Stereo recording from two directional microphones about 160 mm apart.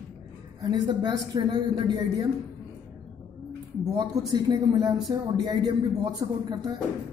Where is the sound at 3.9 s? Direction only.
25° right (ahead or behind).